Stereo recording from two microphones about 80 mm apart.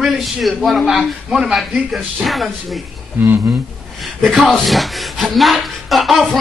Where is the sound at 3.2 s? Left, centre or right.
Right.